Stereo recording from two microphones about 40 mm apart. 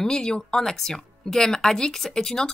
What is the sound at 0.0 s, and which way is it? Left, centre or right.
Speech, centre.